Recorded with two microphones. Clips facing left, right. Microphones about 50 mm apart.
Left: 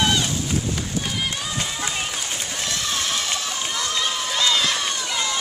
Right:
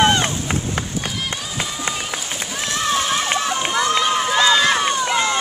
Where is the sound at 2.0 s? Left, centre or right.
Centre.